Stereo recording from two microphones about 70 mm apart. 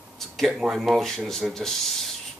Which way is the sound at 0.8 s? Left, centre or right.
Centre.